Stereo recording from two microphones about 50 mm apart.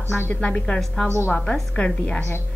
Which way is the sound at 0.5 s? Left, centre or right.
Centre.